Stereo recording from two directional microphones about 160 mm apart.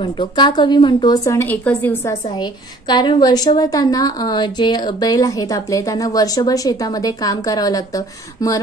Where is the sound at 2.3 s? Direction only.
25° left (ahead or behind).